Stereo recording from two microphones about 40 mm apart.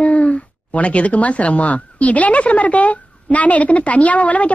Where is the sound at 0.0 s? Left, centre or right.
Left.